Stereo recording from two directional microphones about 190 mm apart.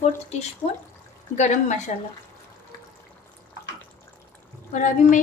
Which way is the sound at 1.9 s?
40° left (ahead or behind).